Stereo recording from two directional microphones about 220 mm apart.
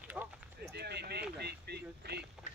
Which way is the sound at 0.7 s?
50° right (ahead or behind).